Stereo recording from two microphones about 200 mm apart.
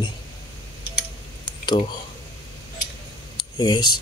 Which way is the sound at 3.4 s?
20° left (ahead or behind).